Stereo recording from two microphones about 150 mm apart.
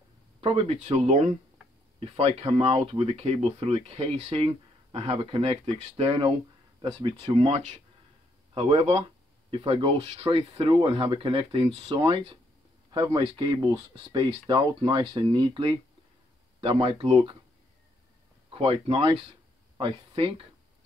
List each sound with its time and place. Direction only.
0.4 s speech: 45° right (ahead or behind); by 13.2 s 25° right (ahead or behind)
14.5 s speech: 25° right (ahead or behind)
18.5 s speech: 40° right (ahead or behind)